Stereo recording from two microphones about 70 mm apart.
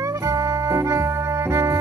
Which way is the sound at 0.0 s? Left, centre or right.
Right.